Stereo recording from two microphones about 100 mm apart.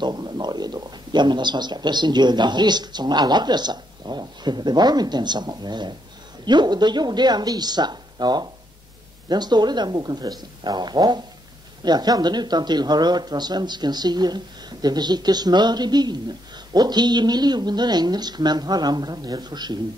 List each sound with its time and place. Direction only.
0.0 s a man's voice: 45° right (ahead or behind)